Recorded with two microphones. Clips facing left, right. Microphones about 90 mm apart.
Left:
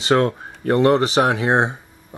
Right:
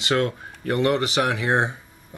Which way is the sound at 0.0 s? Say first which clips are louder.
Left 5 dB; 35° left (ahead or behind).